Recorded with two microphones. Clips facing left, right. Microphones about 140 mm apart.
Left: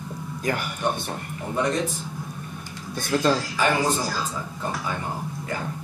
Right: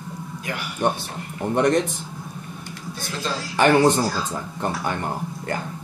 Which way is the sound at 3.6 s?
70° right (ahead or behind).